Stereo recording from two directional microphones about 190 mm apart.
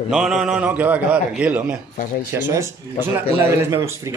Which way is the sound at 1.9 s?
45° left (ahead or behind).